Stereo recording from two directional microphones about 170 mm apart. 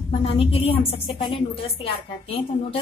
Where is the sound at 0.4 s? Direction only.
35° left (ahead or behind).